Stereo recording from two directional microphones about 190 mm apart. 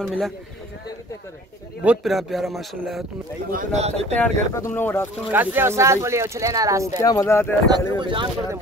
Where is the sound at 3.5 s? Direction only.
40° right (ahead or behind).